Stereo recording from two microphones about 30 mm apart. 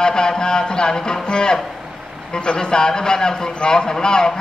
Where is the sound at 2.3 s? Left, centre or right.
Left.